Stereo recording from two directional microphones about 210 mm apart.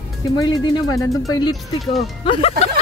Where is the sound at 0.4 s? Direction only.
15° left (ahead or behind).